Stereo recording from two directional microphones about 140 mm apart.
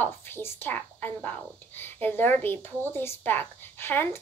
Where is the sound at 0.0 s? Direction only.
15° left (ahead or behind).